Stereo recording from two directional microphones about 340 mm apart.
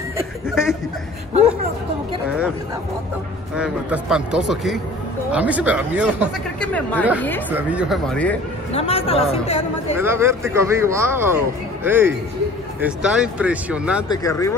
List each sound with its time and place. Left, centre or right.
0.6 s speech: centre
3.5 s speech: centre
8.7 s speech: centre
9.9 s a man's voice: centre
14.0 s speech: centre